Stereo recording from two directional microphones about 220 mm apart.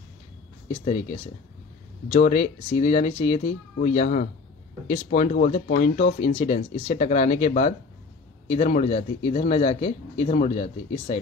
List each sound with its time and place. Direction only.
2.1 s speech: 35° left (ahead or behind)